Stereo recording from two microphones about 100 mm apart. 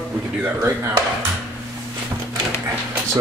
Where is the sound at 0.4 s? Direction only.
15° right (ahead or behind).